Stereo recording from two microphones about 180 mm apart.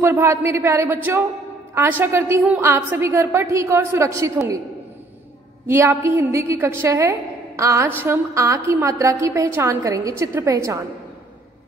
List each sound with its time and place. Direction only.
0.0 s a woman's voice: 15° right (ahead or behind)
5.7 s a woman's voice: 15° right (ahead or behind)